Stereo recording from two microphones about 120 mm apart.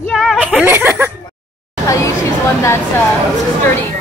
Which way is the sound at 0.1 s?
Centre (ahead or behind).